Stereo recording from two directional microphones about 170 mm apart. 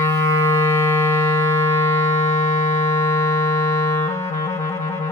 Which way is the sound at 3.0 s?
15° left (ahead or behind).